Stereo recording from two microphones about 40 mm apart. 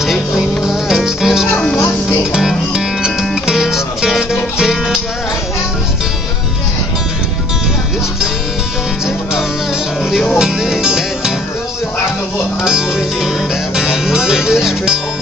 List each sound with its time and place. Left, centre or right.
0.0 s music: centre
1.5 s music: left
2.3 s music: centre
10.4 s music: centre
12.6 s music: centre